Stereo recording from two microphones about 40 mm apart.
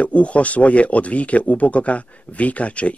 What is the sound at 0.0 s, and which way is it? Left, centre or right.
Speech, left.